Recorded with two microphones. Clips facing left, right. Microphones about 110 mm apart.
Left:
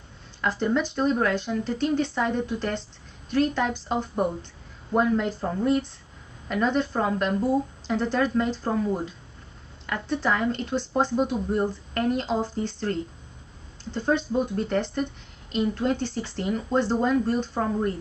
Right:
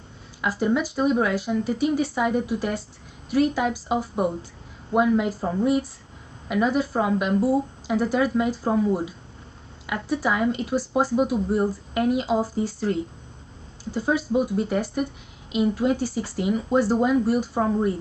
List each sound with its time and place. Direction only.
0.4 s speech: 5° right (ahead or behind)